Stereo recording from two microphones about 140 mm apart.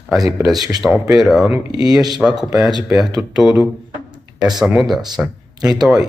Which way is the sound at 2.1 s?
5° right (ahead or behind).